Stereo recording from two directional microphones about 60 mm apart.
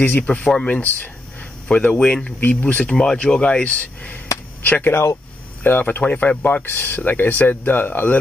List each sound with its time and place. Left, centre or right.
0.3 s speech: centre
0.7 s speech: left
4.9 s speech: left
5.6 s speech: left